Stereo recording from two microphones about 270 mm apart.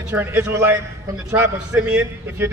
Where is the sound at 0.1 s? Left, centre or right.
Centre.